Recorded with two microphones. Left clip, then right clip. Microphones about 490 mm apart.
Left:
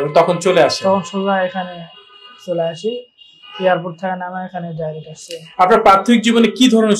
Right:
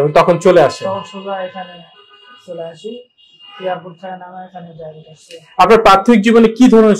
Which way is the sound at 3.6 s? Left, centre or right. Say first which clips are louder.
Left 6 dB; left.